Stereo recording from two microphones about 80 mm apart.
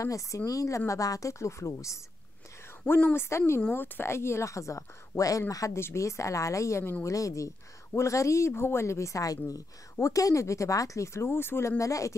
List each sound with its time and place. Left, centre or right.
0.0 s speech: left
2.9 s speech: left
3.7 s speech: left
7.1 s speech: left
11.8 s speech: left